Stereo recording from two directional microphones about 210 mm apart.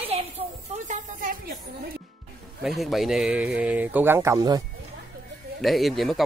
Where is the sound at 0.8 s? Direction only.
40° right (ahead or behind).